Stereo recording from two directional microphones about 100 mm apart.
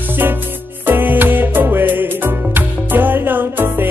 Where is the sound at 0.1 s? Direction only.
20° right (ahead or behind).